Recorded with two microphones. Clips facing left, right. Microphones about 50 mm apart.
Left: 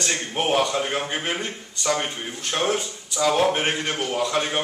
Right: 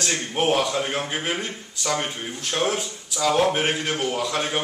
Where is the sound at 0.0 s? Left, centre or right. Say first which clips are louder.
Right 1 dB; centre.